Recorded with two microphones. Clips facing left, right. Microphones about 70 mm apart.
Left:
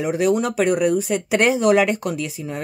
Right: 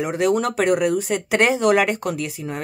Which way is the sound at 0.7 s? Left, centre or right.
Right.